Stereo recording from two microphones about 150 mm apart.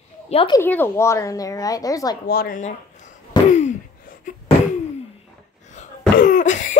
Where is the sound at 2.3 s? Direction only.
90° left.